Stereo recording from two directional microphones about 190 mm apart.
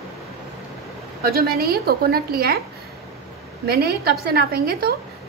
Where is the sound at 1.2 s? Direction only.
55° right (ahead or behind).